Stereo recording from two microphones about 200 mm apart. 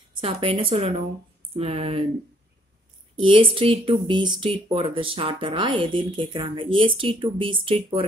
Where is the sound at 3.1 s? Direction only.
25° right (ahead or behind).